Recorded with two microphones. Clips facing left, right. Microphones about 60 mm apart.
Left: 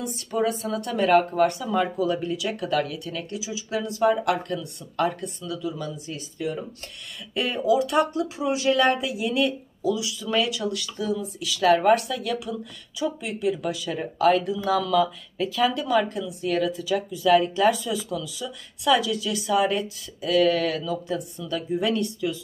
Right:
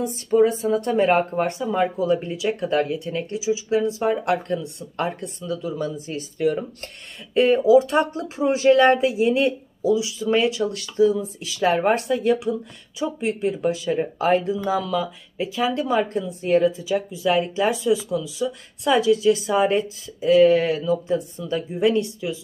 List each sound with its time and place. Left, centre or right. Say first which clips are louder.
0.0 s speech: right 7 dB; right
7.3 s speech: right 7 dB; right
16.7 s speech: right 2 dB; right